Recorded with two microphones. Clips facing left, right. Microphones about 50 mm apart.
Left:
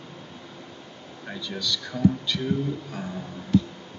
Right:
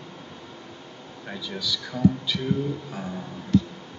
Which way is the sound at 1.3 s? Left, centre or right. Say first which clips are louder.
Even; centre.